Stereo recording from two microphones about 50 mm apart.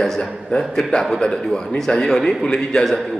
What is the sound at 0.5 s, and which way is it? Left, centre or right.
Speech, left.